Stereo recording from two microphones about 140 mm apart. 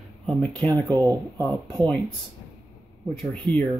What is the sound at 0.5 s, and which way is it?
Speech, 10° left (ahead or behind).